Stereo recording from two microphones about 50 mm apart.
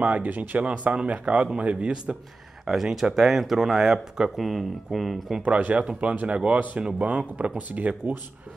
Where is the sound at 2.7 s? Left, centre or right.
Centre.